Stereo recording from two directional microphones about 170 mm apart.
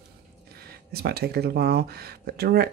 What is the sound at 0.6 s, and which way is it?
Speech, 65° right (ahead or behind).